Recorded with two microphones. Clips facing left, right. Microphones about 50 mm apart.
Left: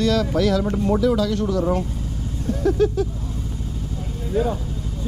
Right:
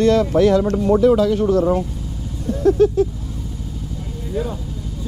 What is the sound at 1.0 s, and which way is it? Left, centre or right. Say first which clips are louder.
Speech: right 7 dB; centre.